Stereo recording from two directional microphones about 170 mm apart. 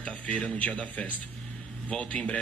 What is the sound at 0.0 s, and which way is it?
Speech, 5° left (ahead or behind).